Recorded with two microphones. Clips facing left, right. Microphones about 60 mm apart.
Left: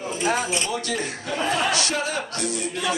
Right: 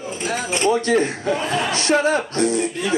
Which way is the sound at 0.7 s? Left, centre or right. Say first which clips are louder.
Right 9 dB; right.